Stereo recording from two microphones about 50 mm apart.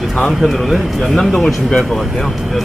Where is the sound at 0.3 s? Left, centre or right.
Centre.